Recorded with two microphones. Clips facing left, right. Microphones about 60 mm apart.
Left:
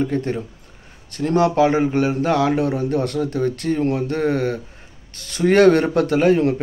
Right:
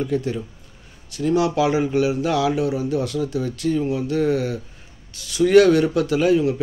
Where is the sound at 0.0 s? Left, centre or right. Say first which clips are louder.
Left 2 dB; left.